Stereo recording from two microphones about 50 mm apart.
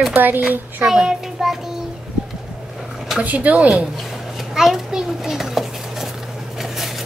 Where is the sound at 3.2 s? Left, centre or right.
Right.